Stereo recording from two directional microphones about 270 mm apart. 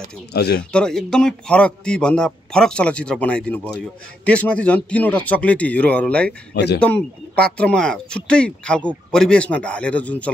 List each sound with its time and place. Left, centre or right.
0.3 s speech: left
0.6 s speech: centre
6.5 s speech: left
6.8 s speech: centre